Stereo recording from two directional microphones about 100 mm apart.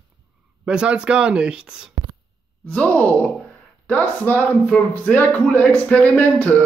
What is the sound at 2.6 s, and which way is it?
Speech, 15° left (ahead or behind).